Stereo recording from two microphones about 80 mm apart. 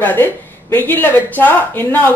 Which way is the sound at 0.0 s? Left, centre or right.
Left.